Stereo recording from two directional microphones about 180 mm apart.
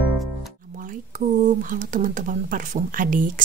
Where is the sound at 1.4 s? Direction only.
45° right (ahead or behind).